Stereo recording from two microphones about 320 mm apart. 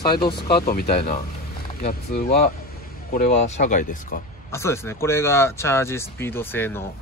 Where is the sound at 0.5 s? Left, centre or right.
Left.